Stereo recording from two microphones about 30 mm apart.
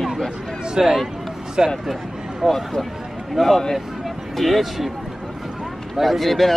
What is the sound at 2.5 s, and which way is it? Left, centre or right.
Speech, centre.